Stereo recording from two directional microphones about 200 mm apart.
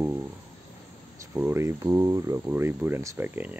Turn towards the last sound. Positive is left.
turn(degrees=-10)  # may be behind; listen again after turning